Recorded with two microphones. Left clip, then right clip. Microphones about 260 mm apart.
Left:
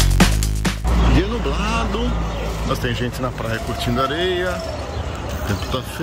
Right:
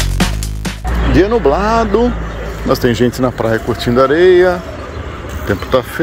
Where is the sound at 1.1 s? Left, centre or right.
Centre.